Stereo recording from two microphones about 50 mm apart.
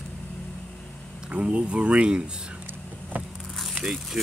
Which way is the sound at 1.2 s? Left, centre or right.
Right.